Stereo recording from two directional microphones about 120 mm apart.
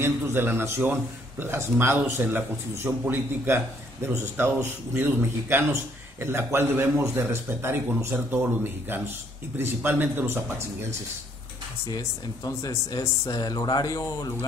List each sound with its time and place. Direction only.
0.0 s speech: 20° right (ahead or behind)
12.4 s speech: 30° left (ahead or behind)